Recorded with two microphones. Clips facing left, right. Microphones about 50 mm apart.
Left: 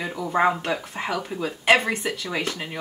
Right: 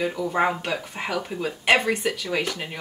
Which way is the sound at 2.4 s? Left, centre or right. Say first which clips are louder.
Right 1 dB; centre.